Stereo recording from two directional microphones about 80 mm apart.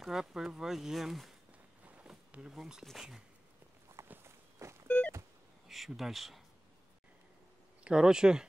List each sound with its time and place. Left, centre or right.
0.0 s speech: centre
2.4 s speech: centre
4.1 s walk: right
4.8 s a sound: centre
5.7 s speech: centre
7.8 s speech: centre